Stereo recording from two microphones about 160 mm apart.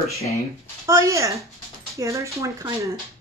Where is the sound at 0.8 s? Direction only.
20° right (ahead or behind).